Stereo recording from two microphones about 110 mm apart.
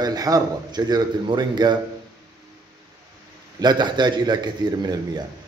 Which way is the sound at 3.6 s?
40° right (ahead or behind).